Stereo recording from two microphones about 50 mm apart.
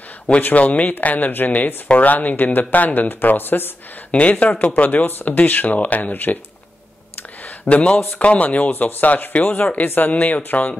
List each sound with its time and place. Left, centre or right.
0.4 s speech: left
4.1 s speech: left
7.7 s speech: left